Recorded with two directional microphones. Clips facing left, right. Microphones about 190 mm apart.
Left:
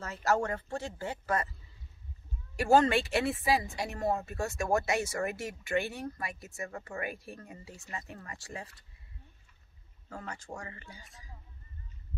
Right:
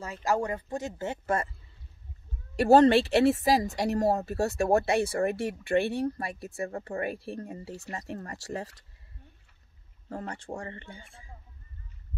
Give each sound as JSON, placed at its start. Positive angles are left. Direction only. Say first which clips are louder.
{"t": 0.0, "sound": "speech", "louder": "right 1 dB", "side_deg": -15}
{"t": 2.5, "sound": "speech", "louder": "right 6 dB", "side_deg": -35}
{"t": 10.0, "sound": "speech", "louder": "right 6 dB", "side_deg": -35}